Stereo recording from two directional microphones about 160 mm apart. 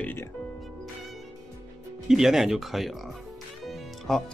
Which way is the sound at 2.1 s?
5° right (ahead or behind).